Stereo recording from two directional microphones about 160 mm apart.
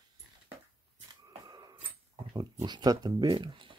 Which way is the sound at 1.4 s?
25° right (ahead or behind).